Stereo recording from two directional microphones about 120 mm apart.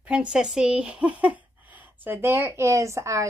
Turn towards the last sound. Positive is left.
turn(degrees=-25)  # may be behind; listen again after turning